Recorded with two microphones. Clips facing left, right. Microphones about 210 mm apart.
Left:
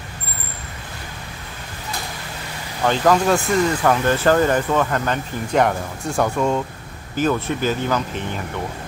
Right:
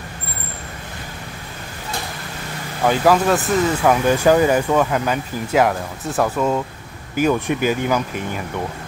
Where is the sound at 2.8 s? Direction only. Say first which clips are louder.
Right 1 dB; 10° right (ahead or behind).